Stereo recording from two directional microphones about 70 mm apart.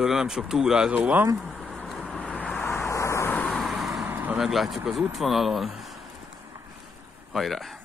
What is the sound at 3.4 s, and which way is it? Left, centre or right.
Vehicle, centre.